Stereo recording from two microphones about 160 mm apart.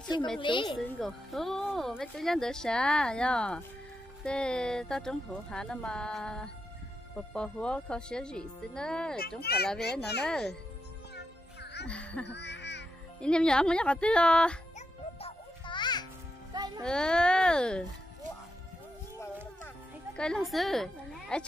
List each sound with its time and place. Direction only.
0.4 s a woman's voice: 30° left (ahead or behind)
0.8 s speech: 5° left (ahead or behind)
9.4 s a child's voice: 80° left
9.9 s speech: 90° left
10.2 s speech: 5° left (ahead or behind)
11.1 s music: 90° left
11.9 s a sound: 10° left (ahead or behind)
12.3 s music: 90° left
13.2 s speech: 5° left (ahead or behind)
15.1 s music: 35° left (ahead or behind)
16.5 s music: 25° right (ahead or behind)
16.8 s speech: 5° left (ahead or behind)
20.2 s speech: 5° left (ahead or behind)